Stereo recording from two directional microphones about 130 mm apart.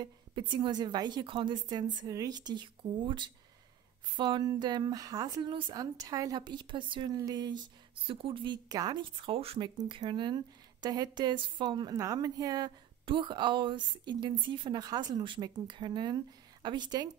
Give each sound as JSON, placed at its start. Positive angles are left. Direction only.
{"t": 0.0, "sound": "speech", "side_deg": -40}
{"t": 8.1, "sound": "a woman's voice", "side_deg": -45}
{"t": 8.6, "sound": "speech", "side_deg": -30}
{"t": 9.8, "sound": "speech", "side_deg": -35}